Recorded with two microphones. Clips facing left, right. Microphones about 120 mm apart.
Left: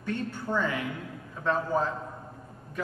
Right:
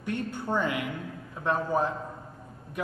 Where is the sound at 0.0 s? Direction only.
15° right (ahead or behind).